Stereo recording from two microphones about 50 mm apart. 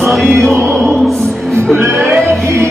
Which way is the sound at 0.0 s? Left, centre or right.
Centre.